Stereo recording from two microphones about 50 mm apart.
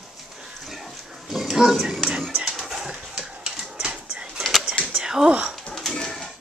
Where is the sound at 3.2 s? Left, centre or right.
Centre.